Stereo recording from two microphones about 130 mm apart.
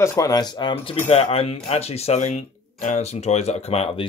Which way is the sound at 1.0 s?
50° left (ahead or behind).